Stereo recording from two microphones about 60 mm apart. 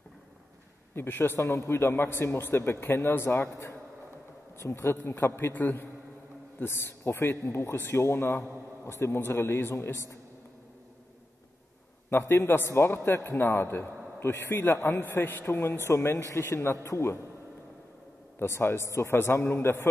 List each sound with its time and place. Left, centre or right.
0.9 s a man's voice: left
4.6 s a man's voice: left
12.1 s a man's voice: left
15.5 s speech: left
16.3 s a man's voice: left
16.8 s speech: left
18.4 s speech: left